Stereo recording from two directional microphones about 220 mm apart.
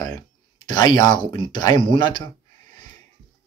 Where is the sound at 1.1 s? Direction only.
35° right (ahead or behind).